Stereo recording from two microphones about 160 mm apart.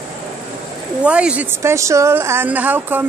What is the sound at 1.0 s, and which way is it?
A woman's voice, 5° right (ahead or behind).